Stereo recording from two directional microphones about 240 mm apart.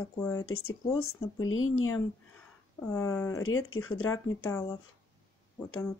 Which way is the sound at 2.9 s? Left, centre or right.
Centre.